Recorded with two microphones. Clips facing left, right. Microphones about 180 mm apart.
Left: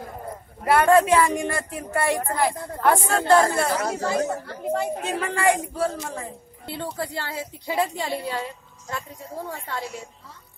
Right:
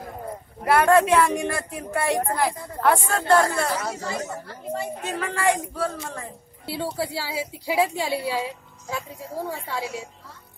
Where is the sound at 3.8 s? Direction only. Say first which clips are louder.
Left 6 dB; 50° left (ahead or behind).